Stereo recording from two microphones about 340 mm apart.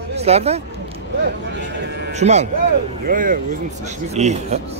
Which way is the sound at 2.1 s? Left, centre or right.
Centre.